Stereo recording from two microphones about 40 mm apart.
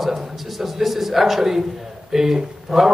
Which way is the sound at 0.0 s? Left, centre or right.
Centre.